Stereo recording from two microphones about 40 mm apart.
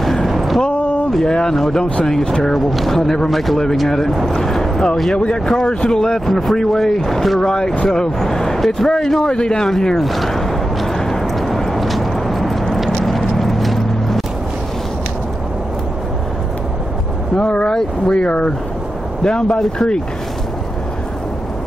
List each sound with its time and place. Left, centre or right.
0.0 s a sound: centre
1.2 s speech: centre
2.5 s speech: centre
5.1 s speech: left
9.9 s a sound: centre
13.0 s vehicle: centre
17.4 s speech: left